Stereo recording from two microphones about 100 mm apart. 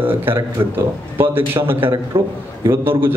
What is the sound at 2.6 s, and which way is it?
Speech, 20° right (ahead or behind).